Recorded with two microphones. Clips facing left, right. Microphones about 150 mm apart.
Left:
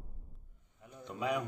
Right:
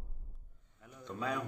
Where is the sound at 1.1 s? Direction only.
15° left (ahead or behind).